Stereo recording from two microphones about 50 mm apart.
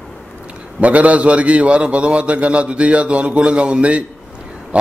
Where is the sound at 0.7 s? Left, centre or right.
Right.